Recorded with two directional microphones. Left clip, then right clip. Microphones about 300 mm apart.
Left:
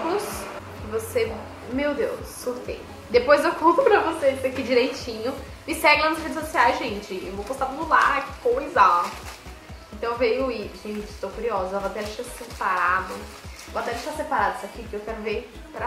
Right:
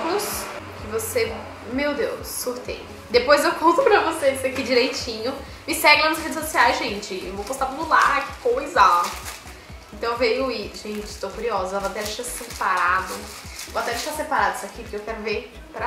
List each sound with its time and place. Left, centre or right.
0.0 s speech: centre